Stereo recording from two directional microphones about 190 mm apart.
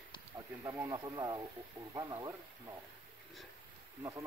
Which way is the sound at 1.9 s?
20° right (ahead or behind).